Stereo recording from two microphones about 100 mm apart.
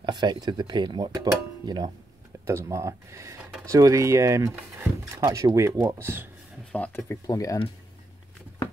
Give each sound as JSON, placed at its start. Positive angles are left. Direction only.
{"t": 0.0, "sound": "speech", "side_deg": -50}
{"t": 2.4, "sound": "speech", "side_deg": -30}
{"t": 6.7, "sound": "speech", "side_deg": 15}
{"t": 7.2, "sound": "speech", "side_deg": 35}